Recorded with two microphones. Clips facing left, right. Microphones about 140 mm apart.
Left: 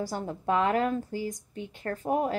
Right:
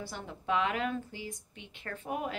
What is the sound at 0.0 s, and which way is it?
A woman's voice, 40° left (ahead or behind).